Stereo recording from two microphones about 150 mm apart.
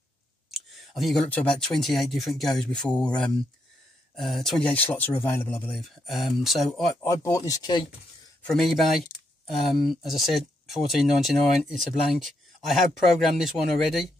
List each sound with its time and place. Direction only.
0.5 s clicking: centre (ahead or behind)
1.3 s speech: 5° left (ahead or behind)
5.8 s speech: centre (ahead or behind)
7.0 s speech: 20° left (ahead or behind)
8.4 s speech: 5° left (ahead or behind)